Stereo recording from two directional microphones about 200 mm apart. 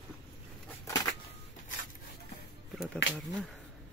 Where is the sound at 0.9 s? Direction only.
15° left (ahead or behind).